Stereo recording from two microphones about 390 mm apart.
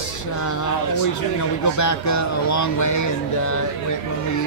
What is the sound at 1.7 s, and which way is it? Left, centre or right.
Speech, left.